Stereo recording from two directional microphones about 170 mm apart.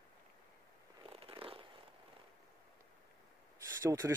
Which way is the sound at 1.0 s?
30° right (ahead or behind).